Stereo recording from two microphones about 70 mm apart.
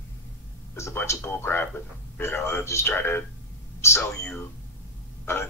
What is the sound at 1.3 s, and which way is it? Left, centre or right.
Speech, left.